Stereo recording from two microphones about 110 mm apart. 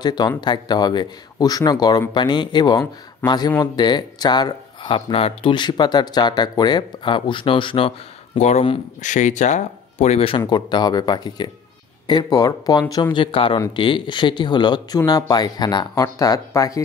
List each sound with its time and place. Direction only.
0.0 s speech: 40° left (ahead or behind)
8.4 s speech: 90° left; by 10.4 s 65° left (ahead or behind)
10.4 s speech: 40° left (ahead or behind)